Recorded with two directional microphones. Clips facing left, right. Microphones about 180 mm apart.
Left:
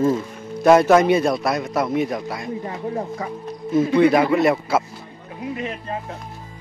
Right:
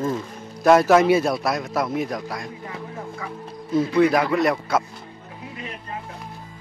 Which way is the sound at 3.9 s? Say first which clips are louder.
Left 3 dB; centre (ahead or behind).